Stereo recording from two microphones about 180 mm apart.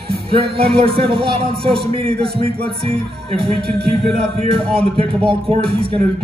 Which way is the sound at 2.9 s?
30° right (ahead or behind).